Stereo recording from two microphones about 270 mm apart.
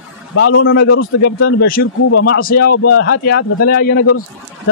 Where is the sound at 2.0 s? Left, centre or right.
Left.